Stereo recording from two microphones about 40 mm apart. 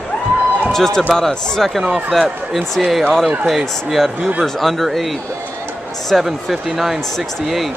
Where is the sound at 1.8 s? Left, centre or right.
Right.